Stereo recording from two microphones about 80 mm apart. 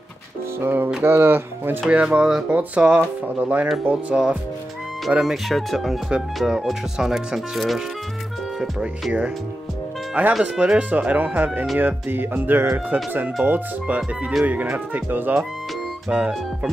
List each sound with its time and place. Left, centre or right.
0.6 s speech: right
1.9 s speech: centre